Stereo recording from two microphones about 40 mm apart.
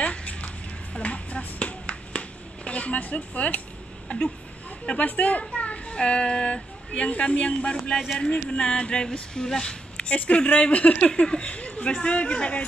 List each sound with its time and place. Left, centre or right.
0.0 s a sound: left
0.9 s finger snapping: left
4.1 s speech: left
5.6 s children playing: left
5.9 s a woman's voice: left
9.9 s speech: left